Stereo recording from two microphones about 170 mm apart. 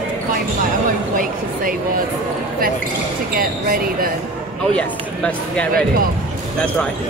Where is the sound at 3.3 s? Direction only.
55° right (ahead or behind).